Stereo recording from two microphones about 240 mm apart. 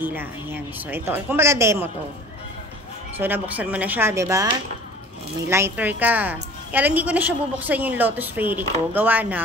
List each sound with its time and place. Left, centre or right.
0.0 s a woman's voice: centre
3.2 s a woman's voice: centre
5.5 s a woman's voice: centre